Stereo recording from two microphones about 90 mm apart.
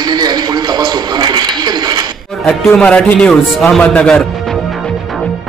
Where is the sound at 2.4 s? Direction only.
10° left (ahead or behind).